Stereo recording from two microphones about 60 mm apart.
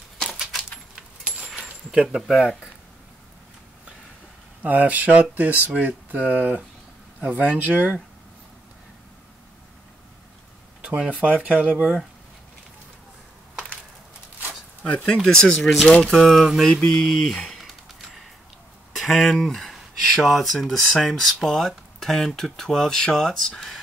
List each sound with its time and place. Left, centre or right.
1.9 s speech: centre
4.6 s speech: right
10.8 s speech: right
15.2 s speech: centre
15.6 s speech: centre
17.5 s a sound: centre
18.9 s speech: centre